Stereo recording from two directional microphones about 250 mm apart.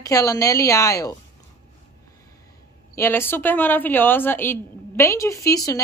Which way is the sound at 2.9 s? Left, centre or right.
Centre.